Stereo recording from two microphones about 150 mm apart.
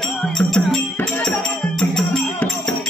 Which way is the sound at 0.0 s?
5° left (ahead or behind).